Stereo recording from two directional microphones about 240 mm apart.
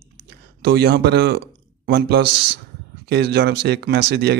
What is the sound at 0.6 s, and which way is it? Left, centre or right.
Speech, right.